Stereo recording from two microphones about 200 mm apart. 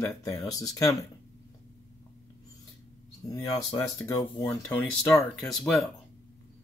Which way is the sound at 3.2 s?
15° left (ahead or behind).